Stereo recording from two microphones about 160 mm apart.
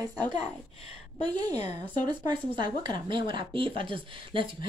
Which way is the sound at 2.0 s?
25° right (ahead or behind).